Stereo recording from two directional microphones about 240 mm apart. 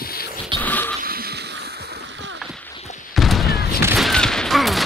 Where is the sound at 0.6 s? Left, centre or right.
Centre.